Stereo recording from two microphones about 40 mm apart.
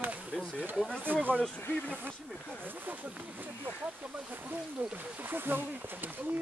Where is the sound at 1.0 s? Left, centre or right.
Right.